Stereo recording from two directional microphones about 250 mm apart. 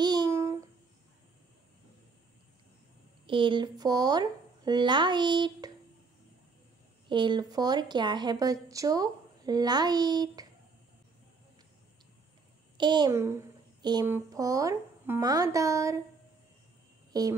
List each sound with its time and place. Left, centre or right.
0.0 s a sound: centre
3.3 s a woman's voice: centre
7.1 s a woman's voice: centre
12.7 s a woman's voice: centre
17.1 s speech: centre